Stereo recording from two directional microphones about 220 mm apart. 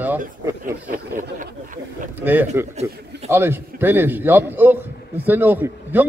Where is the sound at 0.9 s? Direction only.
35° right (ahead or behind).